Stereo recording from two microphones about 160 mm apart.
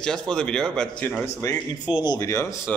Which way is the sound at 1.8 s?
25° left (ahead or behind).